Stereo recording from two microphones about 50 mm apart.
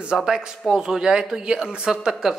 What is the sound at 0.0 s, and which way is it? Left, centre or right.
A man's voice, centre.